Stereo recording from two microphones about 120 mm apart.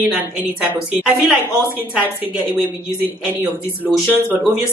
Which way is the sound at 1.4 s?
15° right (ahead or behind).